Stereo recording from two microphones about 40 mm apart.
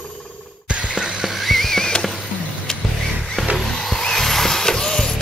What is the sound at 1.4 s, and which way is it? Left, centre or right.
Music, centre.